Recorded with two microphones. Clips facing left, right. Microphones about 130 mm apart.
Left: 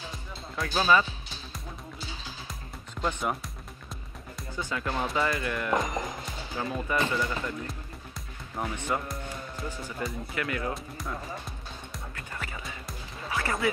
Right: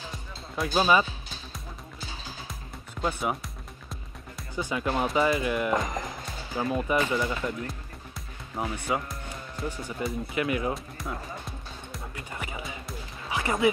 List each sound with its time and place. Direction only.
0.6 s speech: 15° right (ahead or behind)
2.9 s speech: 10° right (ahead or behind)
4.6 s speech: 15° right (ahead or behind)
8.5 s speech: 10° right (ahead or behind)
10.0 s speech: 15° right (ahead or behind)
10.7 s speech: centre (ahead or behind)
12.2 s music: 15° right (ahead or behind)